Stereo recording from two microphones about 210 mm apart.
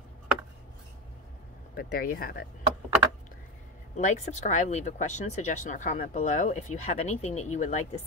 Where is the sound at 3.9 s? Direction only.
35° left (ahead or behind).